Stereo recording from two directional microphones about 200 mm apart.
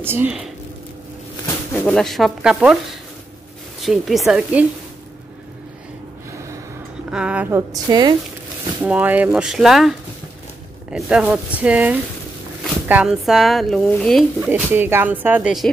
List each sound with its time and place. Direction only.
0.0 s speech: 10° right (ahead or behind)
1.9 s speech: centre (ahead or behind)
3.8 s speech: centre (ahead or behind)
7.1 s speech: 5° right (ahead or behind)
14.5 s speech: 10° right (ahead or behind)